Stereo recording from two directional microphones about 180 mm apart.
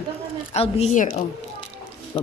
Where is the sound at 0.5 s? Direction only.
35° left (ahead or behind).